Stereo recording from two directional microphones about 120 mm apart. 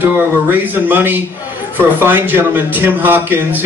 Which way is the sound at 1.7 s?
15° right (ahead or behind).